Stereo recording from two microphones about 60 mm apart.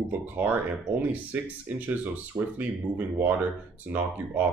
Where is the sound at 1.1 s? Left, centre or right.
Right.